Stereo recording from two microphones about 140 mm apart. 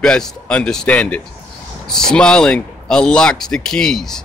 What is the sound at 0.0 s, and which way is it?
A man's voice, 5° left (ahead or behind).